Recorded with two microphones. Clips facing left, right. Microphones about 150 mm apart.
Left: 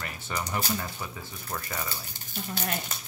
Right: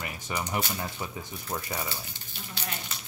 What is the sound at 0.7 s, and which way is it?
Speech, 20° right (ahead or behind).